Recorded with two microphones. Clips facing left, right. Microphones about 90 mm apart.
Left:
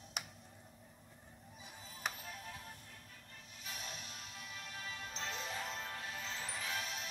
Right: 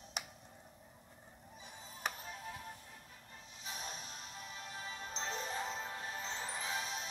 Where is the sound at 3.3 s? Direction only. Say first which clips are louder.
Right 2 dB; 25° right (ahead or behind).